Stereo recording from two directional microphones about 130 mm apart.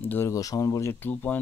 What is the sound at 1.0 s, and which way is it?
Speech, 15° left (ahead or behind).